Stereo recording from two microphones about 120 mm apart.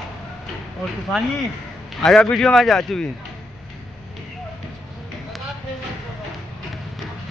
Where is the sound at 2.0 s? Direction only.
5° left (ahead or behind).